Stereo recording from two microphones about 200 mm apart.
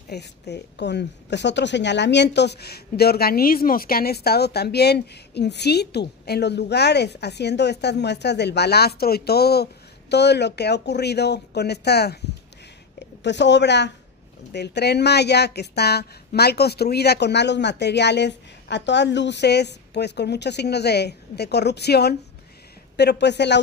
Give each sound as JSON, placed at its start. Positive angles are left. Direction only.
{"t": 0.1, "sound": "a woman's voice", "side_deg": 55}
{"t": 13.2, "sound": "a woman's voice", "side_deg": 60}